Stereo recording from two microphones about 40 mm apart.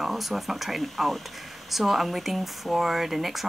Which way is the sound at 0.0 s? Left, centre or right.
Centre.